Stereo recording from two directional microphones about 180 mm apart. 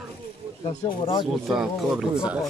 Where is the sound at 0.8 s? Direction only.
30° left (ahead or behind).